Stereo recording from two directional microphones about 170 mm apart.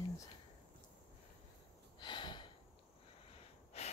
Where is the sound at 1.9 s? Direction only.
30° left (ahead or behind).